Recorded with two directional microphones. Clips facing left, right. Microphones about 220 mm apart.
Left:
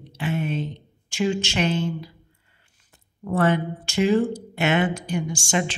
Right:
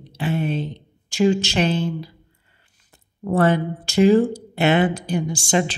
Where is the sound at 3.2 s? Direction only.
35° right (ahead or behind).